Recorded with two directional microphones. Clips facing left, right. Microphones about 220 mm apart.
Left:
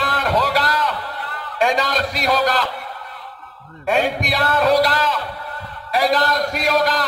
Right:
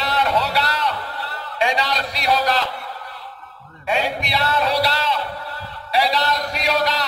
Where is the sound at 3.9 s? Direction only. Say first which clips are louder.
Left 3 dB; 50° left (ahead or behind).